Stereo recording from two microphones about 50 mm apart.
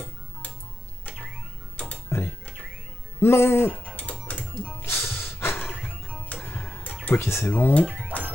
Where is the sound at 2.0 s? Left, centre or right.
Left.